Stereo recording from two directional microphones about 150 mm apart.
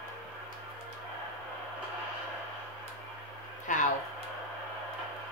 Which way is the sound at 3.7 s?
60° left (ahead or behind).